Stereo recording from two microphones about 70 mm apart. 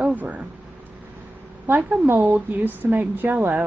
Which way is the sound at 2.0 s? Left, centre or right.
Right.